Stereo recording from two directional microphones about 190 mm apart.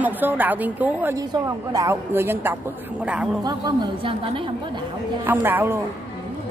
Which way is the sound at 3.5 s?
25° right (ahead or behind).